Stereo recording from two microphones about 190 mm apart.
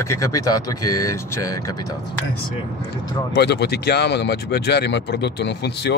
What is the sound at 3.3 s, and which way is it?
Speech, 60° left (ahead or behind).